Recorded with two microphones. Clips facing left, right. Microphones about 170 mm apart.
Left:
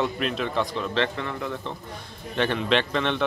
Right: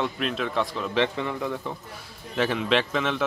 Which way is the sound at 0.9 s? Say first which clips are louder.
Right 1 dB; 15° right (ahead or behind).